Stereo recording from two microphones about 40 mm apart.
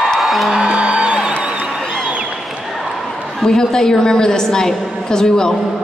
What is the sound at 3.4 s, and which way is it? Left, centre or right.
A woman's voice, centre.